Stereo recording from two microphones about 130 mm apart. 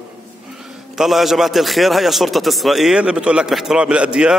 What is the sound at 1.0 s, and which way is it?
A man's voice, centre (ahead or behind).